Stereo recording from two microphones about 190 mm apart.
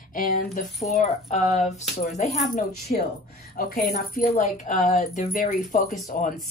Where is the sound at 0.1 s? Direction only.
45° left (ahead or behind).